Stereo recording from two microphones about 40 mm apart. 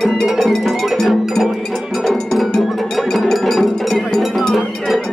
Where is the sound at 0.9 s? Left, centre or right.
Centre.